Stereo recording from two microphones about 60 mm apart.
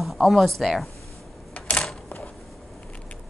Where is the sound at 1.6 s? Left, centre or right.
Centre.